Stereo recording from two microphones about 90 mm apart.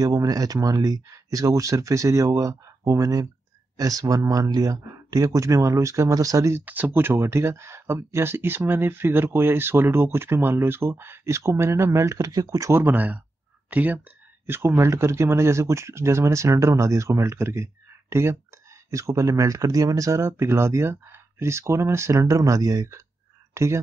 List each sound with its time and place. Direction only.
0.0 s speech: 40° right (ahead or behind)
6.6 s speech: 20° right (ahead or behind); by 12.8 s 35° right (ahead or behind)
12.8 s speech: 20° right (ahead or behind)